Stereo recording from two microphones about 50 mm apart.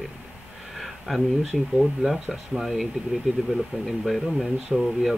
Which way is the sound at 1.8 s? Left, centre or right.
Centre.